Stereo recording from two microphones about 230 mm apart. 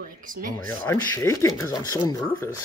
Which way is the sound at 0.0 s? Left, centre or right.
Right.